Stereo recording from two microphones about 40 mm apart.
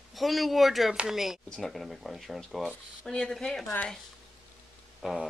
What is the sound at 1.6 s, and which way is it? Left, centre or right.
Speech, centre.